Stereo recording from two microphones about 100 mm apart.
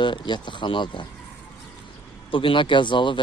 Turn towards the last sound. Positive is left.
turn(degrees=55)  # may be behind; listen again after turning